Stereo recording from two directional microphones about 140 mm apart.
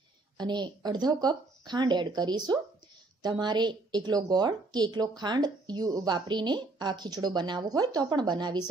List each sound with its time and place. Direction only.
0.4 s speech: 30° right (ahead or behind)